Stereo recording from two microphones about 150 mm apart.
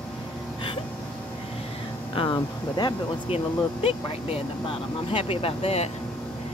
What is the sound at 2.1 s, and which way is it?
Speech, 30° left (ahead or behind).